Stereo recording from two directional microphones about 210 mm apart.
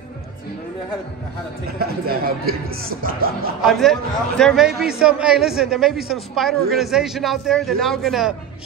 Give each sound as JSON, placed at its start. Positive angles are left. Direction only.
{"t": 1.8, "sound": "speech", "side_deg": -45}
{"t": 3.6, "sound": "a man's voice", "side_deg": 0}